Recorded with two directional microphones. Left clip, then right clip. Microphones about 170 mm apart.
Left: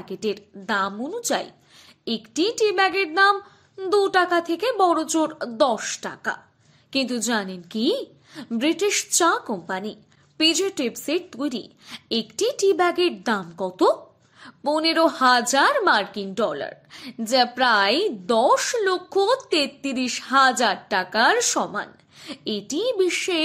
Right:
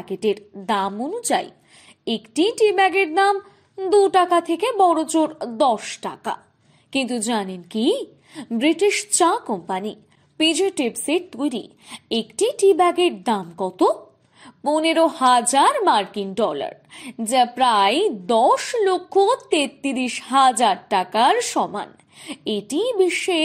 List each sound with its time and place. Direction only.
0.0 s a woman's voice: 10° right (ahead or behind)
2.5 s a woman's voice: 10° right (ahead or behind)